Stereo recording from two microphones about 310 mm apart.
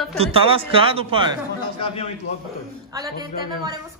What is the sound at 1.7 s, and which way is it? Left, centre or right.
Speech, centre.